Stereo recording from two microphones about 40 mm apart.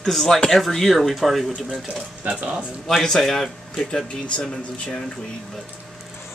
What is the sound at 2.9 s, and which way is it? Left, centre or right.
A man's voice, centre.